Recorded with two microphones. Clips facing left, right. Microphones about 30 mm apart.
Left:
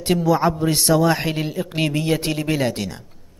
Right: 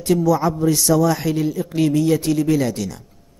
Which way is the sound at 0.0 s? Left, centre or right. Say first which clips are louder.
Right 1 dB; left.